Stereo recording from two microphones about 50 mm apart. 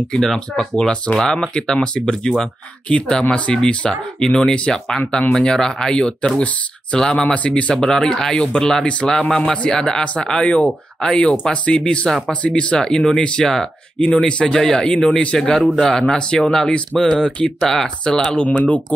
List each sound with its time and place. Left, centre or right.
0.1 s speech: centre; by 7.8 s left
7.8 s speech: centre
15.1 s speech: centre